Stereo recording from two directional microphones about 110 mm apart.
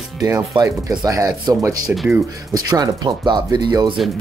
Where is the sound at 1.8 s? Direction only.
5° right (ahead or behind).